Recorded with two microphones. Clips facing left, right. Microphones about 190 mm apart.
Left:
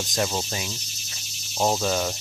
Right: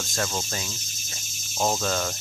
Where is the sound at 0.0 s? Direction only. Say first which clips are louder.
Left 3 dB; 15° left (ahead or behind).